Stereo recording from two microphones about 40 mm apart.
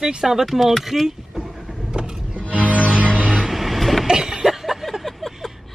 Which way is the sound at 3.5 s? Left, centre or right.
Centre.